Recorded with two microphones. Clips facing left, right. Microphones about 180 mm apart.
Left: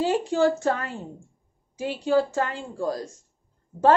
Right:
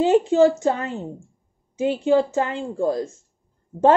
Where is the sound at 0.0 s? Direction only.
20° right (ahead or behind).